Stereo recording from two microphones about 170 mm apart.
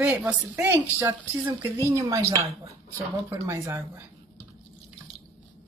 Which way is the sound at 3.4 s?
15° right (ahead or behind).